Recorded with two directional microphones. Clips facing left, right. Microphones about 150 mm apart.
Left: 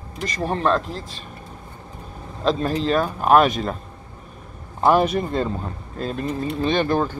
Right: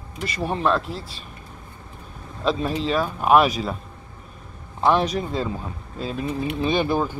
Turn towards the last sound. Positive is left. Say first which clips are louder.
# left 1 dB
turn(degrees=-10)  # may be behind; listen again after turning